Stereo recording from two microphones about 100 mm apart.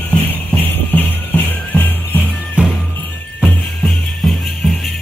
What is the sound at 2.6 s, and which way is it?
Music, 10° right (ahead or behind).